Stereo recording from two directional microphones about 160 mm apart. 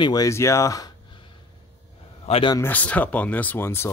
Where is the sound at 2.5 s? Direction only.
10° left (ahead or behind).